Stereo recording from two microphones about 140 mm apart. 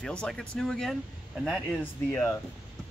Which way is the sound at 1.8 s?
15° left (ahead or behind).